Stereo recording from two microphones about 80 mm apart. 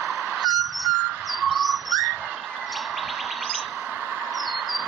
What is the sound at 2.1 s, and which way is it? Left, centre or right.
Bird, right.